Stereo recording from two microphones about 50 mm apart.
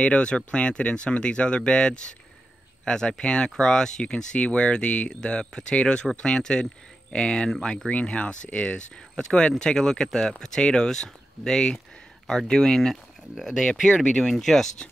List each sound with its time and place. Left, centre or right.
0.0 s speech: left; by 14.7 s centre